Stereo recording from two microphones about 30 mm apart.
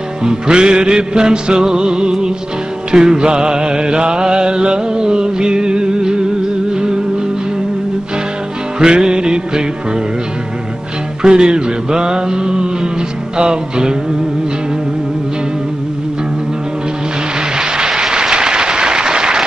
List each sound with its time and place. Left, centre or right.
0.2 s music: right
8.7 s music: right
11.2 s music: right
17.6 s a sound: right
18.0 s applause: right